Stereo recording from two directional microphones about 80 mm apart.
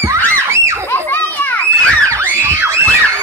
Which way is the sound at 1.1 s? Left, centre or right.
Left.